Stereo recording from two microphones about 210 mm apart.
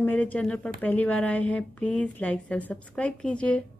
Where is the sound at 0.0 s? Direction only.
5° left (ahead or behind).